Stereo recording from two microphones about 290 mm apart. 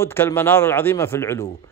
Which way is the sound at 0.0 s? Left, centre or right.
Centre.